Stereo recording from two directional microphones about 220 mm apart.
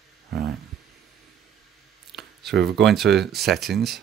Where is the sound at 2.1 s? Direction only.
Centre (ahead or behind).